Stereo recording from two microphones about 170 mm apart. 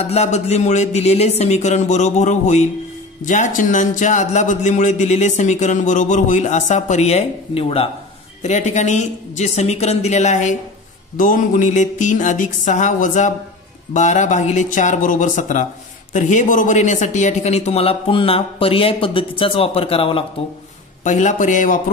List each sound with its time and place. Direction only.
0.0 s a man's voice: 40° left (ahead or behind)
21.0 s a man's voice: 45° left (ahead or behind)